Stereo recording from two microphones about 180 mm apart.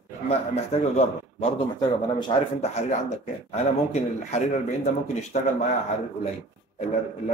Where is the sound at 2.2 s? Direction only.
25° left (ahead or behind).